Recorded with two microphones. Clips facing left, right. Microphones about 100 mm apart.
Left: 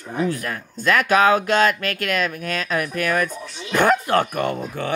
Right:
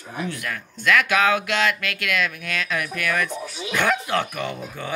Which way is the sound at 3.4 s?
10° right (ahead or behind).